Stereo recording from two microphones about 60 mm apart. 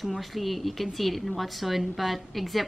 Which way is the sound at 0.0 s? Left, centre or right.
Centre.